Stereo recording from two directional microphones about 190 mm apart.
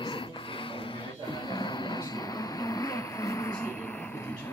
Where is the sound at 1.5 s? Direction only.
25° left (ahead or behind).